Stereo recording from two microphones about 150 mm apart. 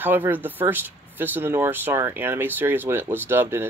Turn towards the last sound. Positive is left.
turn(degrees=-15)  # may be behind; listen again after turning